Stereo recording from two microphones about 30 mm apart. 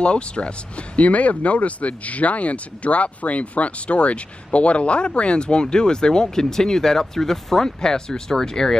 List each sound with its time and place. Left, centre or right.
0.0 s speech: left; by 8.7 s centre